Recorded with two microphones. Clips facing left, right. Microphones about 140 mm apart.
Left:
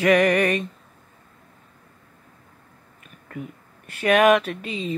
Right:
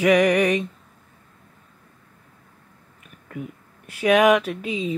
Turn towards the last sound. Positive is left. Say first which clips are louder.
# right 3 dB
turn(degrees=-10)  # may be behind; listen again after turning